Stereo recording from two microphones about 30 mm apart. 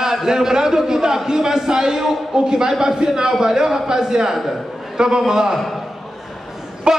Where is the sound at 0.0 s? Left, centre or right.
Centre.